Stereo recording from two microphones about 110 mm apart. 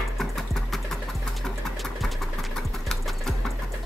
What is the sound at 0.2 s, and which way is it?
Music, centre (ahead or behind).